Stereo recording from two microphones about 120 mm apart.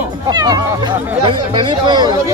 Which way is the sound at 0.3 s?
35° right (ahead or behind).